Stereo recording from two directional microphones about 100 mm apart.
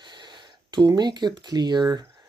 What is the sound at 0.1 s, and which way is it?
Speech, 50° right (ahead or behind).